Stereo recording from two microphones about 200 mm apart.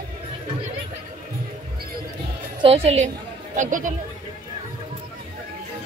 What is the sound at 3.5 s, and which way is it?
Speech, 40° right (ahead or behind).